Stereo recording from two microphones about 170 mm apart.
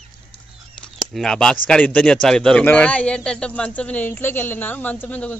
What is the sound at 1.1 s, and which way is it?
Speech, 5° left (ahead or behind).